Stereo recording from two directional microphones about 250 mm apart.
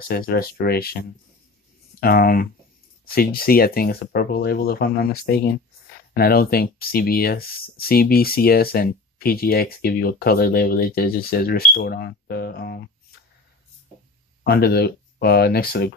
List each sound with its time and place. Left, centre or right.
0.1 s speech: left
2.0 s speech: left
14.4 s speech: left